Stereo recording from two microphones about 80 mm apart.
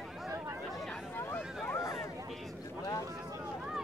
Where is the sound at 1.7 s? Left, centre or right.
Left.